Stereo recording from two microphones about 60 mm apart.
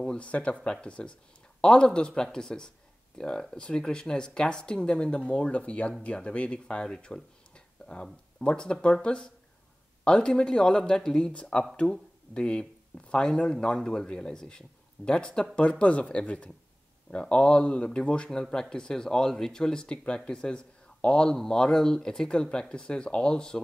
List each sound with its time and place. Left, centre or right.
0.0 s a man's voice: centre